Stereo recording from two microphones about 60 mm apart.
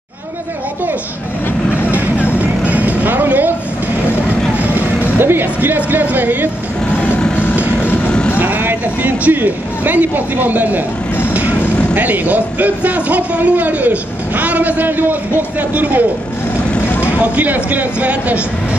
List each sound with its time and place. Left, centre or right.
2.0 s vehicle: left
2.3 s vehicle: right
5.2 s music: right
5.8 s a man's voice: right
7.8 s vehicle: left
8.4 s speech: right
11.9 s a man's voice: right
17.2 s a man's voice: right